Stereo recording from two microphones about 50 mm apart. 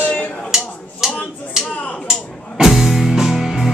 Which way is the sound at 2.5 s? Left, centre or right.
Centre.